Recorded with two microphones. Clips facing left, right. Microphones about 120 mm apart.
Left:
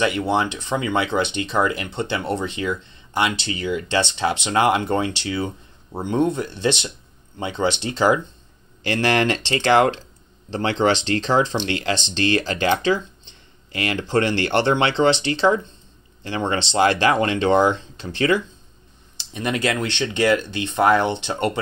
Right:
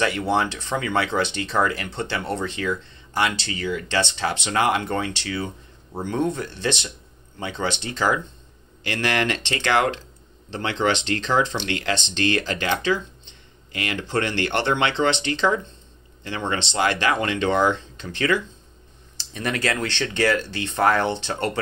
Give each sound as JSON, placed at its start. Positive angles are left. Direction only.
{"t": 0.4, "sound": "speech", "side_deg": 25}
{"t": 19.3, "sound": "speech", "side_deg": 15}
{"t": 20.8, "sound": "speech", "side_deg": 5}